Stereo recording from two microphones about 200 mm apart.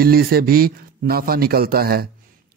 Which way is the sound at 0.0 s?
50° right (ahead or behind).